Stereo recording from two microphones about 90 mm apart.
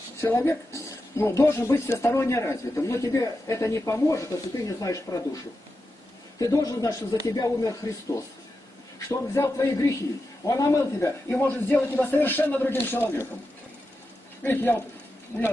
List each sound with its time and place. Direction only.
0.2 s speech: 30° left (ahead or behind)
11.3 s speech: 20° left (ahead or behind)
14.4 s speech: 25° left (ahead or behind)